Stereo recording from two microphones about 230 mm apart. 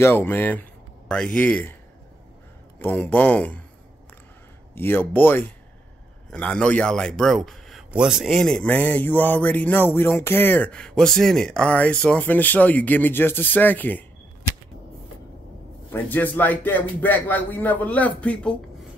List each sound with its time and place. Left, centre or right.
0.0 s speech: centre
2.8 s a man's voice: centre
4.7 s a man's voice: centre
15.9 s a man's voice: centre